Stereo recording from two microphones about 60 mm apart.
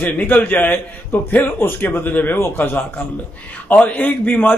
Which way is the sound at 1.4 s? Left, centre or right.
Left.